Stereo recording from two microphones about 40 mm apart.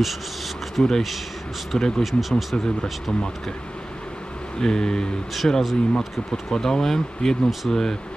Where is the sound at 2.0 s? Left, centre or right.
Centre.